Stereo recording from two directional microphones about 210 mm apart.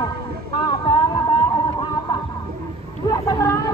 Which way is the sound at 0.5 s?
20° left (ahead or behind).